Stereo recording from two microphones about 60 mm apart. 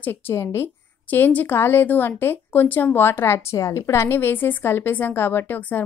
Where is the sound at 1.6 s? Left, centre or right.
Left.